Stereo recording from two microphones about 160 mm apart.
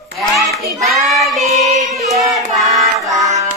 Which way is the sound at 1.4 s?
45° right (ahead or behind).